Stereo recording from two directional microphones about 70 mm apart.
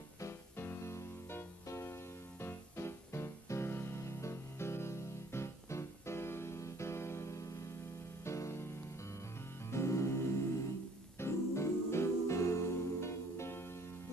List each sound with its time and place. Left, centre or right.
0.2 s music: left